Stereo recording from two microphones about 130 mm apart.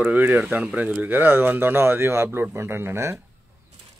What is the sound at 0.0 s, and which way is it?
Speech, 10° right (ahead or behind).